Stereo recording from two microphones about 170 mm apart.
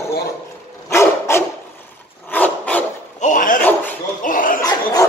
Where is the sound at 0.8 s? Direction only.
15° left (ahead or behind).